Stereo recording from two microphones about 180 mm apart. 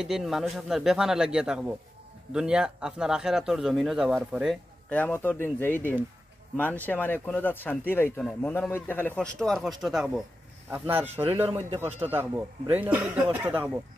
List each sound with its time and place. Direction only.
0.0 s speech: centre (ahead or behind)
4.8 s speech: 10° left (ahead or behind); by 13.7 s 10° right (ahead or behind)